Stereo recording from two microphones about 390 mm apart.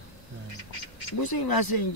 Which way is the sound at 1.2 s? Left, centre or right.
Left.